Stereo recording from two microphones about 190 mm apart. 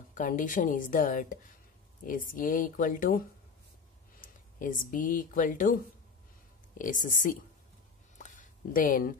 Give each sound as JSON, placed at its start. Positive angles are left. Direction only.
{"t": 0.1, "sound": "speech", "side_deg": 45}
{"t": 4.2, "sound": "speech", "side_deg": 45}
{"t": 6.8, "sound": "speech", "side_deg": 45}
{"t": 8.2, "sound": "a sound", "side_deg": 45}